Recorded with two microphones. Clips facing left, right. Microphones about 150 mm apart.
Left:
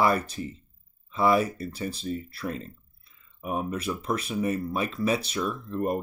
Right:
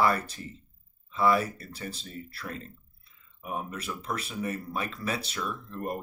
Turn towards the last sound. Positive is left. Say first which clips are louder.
# left 6 dB
turn(degrees=20)  # may be behind; listen again after turning